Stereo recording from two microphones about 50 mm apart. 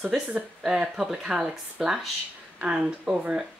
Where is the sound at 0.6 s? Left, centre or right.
Centre.